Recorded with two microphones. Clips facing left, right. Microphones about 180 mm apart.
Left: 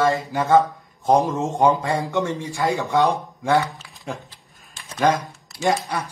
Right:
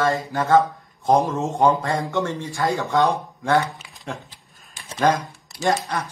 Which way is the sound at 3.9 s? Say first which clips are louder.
Left 3 dB; centre (ahead or behind).